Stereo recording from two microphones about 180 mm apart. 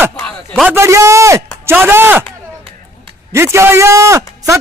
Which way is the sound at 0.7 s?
15° right (ahead or behind).